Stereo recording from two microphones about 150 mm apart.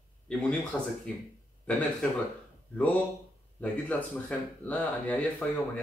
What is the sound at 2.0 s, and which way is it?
Speech, 5° left (ahead or behind).